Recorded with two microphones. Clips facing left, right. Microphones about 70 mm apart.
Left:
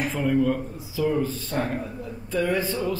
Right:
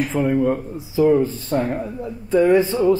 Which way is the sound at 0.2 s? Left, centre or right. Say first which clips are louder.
Right 3 dB; right.